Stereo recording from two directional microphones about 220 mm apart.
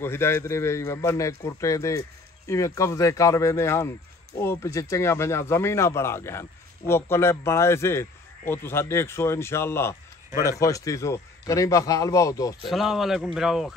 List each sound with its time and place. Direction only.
0.0 s a man's voice: 10° left (ahead or behind)
12.6 s a man's voice: centre (ahead or behind)